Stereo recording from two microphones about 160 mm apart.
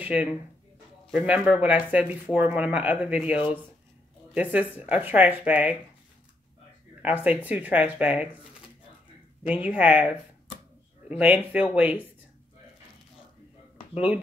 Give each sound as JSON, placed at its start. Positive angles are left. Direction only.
{"t": 0.0, "sound": "speech", "side_deg": -10}
{"t": 7.0, "sound": "speech", "side_deg": -10}
{"t": 9.5, "sound": "speech", "side_deg": -10}
{"t": 13.9, "sound": "speech", "side_deg": -10}